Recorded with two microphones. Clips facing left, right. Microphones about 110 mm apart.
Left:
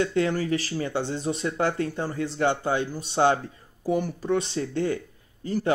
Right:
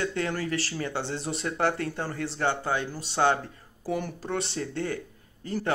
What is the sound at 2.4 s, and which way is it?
A man's voice, 20° left (ahead or behind).